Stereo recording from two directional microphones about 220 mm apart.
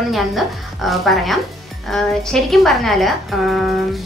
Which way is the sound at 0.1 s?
Centre (ahead or behind).